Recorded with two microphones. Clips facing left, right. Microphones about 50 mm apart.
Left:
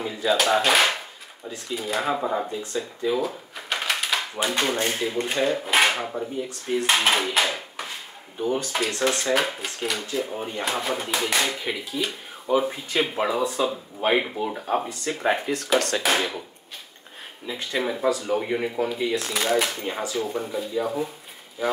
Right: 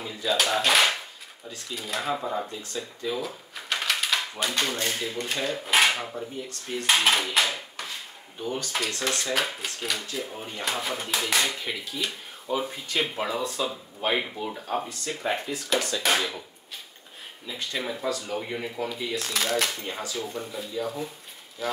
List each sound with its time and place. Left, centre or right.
0.0 s speech: centre
15.5 s speech: left
16.0 s speech: centre
17.5 s speech: centre